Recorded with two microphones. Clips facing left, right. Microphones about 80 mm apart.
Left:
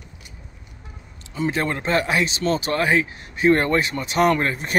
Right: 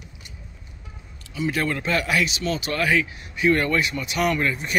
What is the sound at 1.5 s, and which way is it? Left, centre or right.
Speech, left.